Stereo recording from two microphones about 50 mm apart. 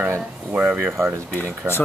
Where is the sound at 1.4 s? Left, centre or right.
Left.